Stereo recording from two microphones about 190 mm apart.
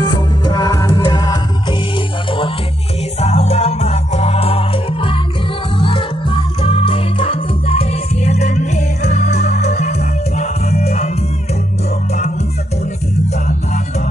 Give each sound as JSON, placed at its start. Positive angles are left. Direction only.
{"t": 0.0, "sound": "music", "side_deg": 20}
{"t": 3.2, "sound": "music", "side_deg": 35}